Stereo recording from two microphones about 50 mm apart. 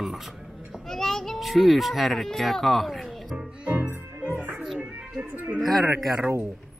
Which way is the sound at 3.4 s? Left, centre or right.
Right.